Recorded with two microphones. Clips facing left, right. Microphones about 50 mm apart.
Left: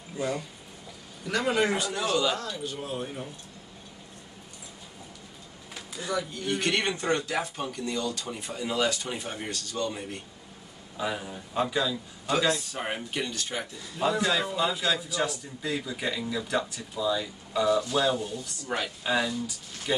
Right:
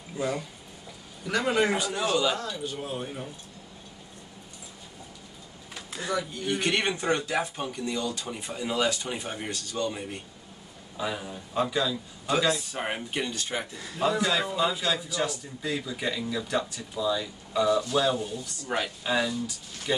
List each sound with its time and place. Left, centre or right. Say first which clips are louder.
1.2 s a man's voice: right 1 dB; centre
6.0 s speech: right 1 dB; centre
11.0 s a man's voice: even; centre
14.0 s a man's voice: even; centre